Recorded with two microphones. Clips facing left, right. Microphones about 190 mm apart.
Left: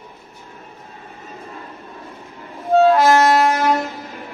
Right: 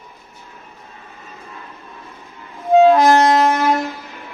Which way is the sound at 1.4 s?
35° left (ahead or behind).